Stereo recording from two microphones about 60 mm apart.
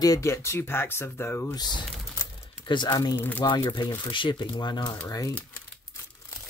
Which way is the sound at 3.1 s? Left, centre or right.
Left.